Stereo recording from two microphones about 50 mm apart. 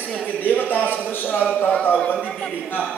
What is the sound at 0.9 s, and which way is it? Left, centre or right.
Speech, left.